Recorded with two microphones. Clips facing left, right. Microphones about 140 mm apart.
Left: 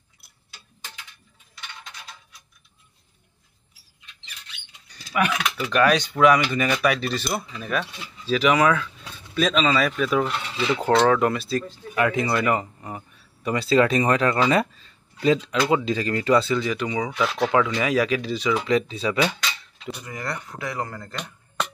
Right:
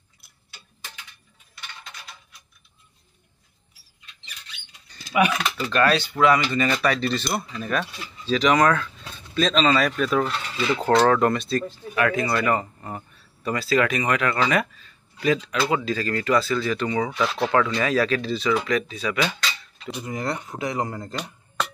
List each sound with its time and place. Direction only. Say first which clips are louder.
5.3 s speech: even; 5° left (ahead or behind)
5.7 s speech: left 1 dB; 15° left (ahead or behind)
11.9 s speech: left 1 dB; 20° left (ahead or behind)
18.7 s speech: left 3 dB; 25° left (ahead or behind)
20.0 s speech: right 6 dB; 25° right (ahead or behind)